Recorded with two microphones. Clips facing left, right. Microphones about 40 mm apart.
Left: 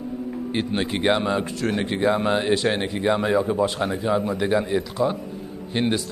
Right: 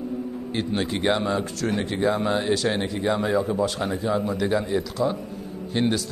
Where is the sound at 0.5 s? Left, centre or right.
Left.